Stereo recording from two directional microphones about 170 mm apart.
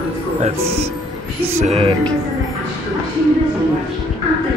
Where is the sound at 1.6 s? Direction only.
35° right (ahead or behind).